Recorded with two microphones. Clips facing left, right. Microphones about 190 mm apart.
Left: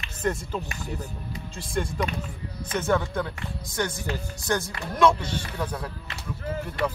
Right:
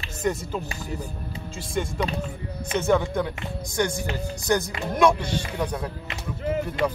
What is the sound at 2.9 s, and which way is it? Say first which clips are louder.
Speech: right 3 dB; 15° right (ahead or behind).